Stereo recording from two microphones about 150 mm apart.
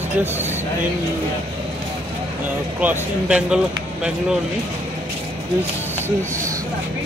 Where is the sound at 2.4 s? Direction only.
10° right (ahead or behind).